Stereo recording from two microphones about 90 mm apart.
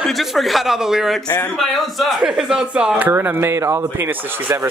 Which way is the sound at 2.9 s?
20° right (ahead or behind).